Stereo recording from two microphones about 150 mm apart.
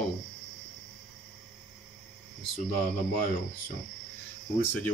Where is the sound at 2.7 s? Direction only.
75° left (ahead or behind).